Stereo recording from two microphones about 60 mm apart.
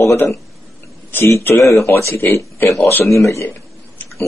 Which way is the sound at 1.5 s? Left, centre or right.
Left.